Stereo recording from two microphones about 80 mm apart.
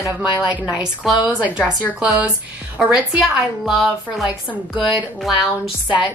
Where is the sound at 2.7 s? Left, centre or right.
Centre.